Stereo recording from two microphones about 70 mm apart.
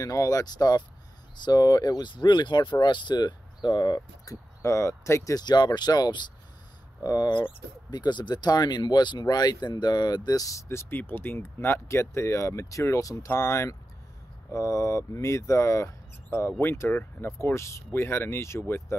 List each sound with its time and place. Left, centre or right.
0.0 s speech: left
1.3 s speech: left
4.6 s speech: left
5.3 s speech: left
7.0 s speech: left
7.9 s speech: left
10.7 s speech: left
11.0 s speech: left
13.3 s speech: left
14.5 s speech: left